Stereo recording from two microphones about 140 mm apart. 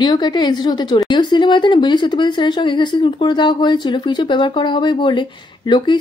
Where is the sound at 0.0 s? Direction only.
30° left (ahead or behind).